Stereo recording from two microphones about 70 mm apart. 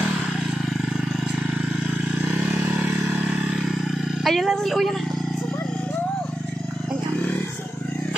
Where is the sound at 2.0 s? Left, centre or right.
Centre.